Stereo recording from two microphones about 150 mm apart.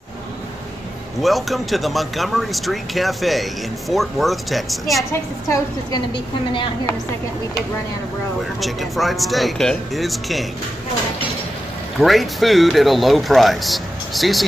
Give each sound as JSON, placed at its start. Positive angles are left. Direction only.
{"t": 1.2, "sound": "speech", "side_deg": 0}
{"t": 5.5, "sound": "a woman's voice", "side_deg": 25}
{"t": 8.5, "sound": "speech", "side_deg": 0}
{"t": 12.0, "sound": "speech", "side_deg": 0}